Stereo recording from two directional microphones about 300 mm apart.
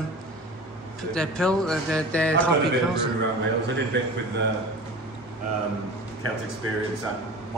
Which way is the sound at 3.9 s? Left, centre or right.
Right.